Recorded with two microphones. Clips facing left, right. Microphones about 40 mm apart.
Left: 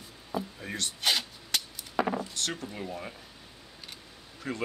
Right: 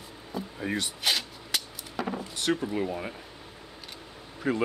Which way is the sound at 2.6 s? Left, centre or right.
Right.